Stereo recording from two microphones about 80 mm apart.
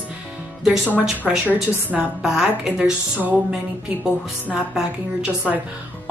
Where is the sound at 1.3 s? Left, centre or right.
Centre.